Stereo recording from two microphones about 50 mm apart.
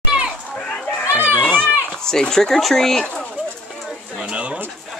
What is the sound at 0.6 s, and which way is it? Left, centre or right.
Children playing, centre.